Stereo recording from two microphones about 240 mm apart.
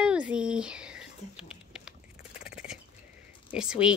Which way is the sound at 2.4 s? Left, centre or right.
Centre.